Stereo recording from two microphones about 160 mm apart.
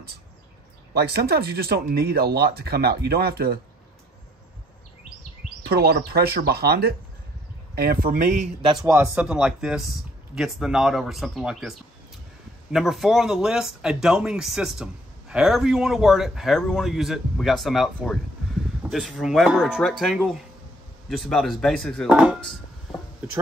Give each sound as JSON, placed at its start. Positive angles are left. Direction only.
{"t": 0.9, "sound": "speech", "side_deg": -85}
{"t": 5.7, "sound": "speech", "side_deg": -80}
{"t": 8.8, "sound": "speech", "side_deg": -15}
{"t": 12.7, "sound": "speech", "side_deg": 0}